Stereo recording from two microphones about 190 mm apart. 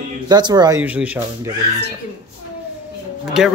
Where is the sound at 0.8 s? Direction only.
5° right (ahead or behind).